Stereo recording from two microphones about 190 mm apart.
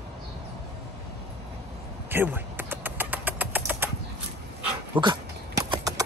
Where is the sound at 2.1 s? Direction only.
10° right (ahead or behind).